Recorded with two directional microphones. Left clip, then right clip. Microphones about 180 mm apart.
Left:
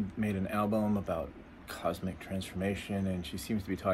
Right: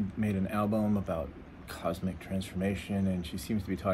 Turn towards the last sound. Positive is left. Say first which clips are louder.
# right 1 dB
turn(degrees=15)  # may be behind; listen again after turning